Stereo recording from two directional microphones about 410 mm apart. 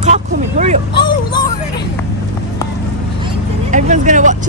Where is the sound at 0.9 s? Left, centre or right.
Centre.